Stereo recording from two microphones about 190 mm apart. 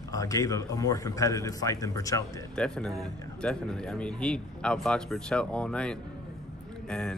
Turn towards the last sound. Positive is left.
turn(degrees=5)  # may be behind; listen again after turning